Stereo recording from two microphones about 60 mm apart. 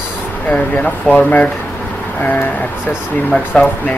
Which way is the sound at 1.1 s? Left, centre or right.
Left.